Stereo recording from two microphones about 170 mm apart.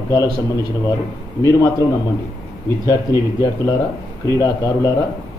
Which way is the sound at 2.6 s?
20° left (ahead or behind).